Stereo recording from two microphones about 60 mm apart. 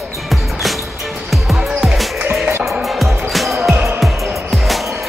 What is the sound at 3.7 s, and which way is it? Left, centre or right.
Music, right.